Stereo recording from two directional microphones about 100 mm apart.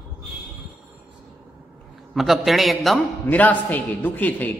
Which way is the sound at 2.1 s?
Centre (ahead or behind).